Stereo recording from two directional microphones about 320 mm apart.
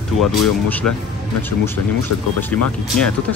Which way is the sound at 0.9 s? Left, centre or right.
Left.